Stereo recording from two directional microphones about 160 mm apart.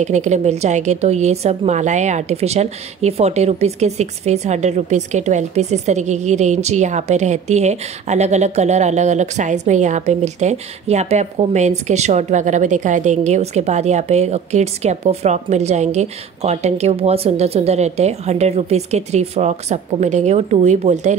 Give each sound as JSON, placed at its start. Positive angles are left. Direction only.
{"t": 0.0, "sound": "a woman's voice", "side_deg": -45}